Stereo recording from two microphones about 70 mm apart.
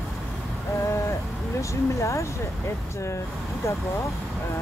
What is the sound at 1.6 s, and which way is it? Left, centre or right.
Speech, left.